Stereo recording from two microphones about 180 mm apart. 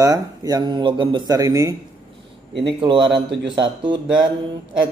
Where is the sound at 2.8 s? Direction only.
25° right (ahead or behind).